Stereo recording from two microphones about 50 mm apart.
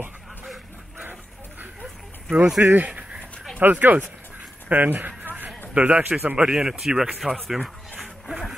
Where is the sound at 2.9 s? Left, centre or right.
Right.